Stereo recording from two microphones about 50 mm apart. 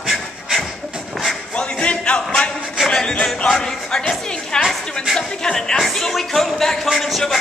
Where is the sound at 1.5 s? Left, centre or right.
Left.